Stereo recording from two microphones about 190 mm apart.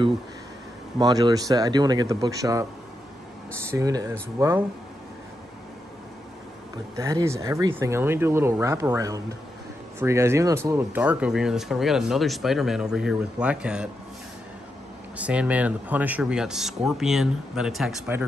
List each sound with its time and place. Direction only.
0.9 s speech: 20° right (ahead or behind)
3.7 s speech: 15° right (ahead or behind)
7.0 s speech: 15° right (ahead or behind)
15.1 s speech: 5° right (ahead or behind)